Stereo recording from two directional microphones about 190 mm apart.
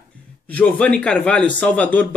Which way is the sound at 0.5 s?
10° left (ahead or behind).